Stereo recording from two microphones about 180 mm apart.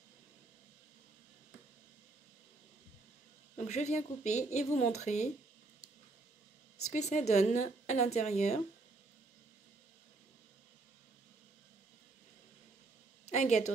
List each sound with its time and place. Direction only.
3.5 s speech: 40° left (ahead or behind)
6.9 s speech: 40° left (ahead or behind)
13.3 s a woman's voice: 40° left (ahead or behind)